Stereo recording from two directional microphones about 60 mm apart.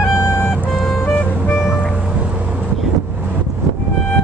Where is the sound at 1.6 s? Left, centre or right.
Centre.